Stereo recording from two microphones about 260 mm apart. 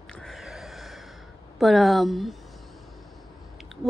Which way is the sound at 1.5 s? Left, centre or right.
Centre.